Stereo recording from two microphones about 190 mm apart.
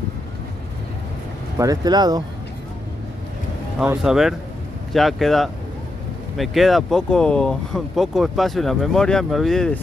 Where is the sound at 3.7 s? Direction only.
5° right (ahead or behind).